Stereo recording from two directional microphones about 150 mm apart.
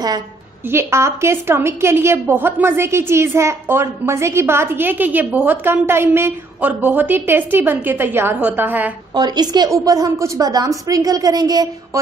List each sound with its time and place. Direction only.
0.7 s a woman's voice: 15° right (ahead or behind)
9.1 s a woman's voice: 30° right (ahead or behind)